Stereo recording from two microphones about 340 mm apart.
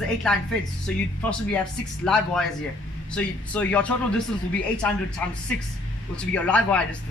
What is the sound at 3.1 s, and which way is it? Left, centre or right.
Speech, centre.